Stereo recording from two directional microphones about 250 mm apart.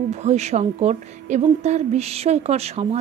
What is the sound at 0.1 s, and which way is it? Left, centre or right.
A woman's voice, right.